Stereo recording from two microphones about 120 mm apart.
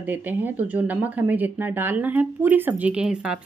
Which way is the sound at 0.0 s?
15° right (ahead or behind).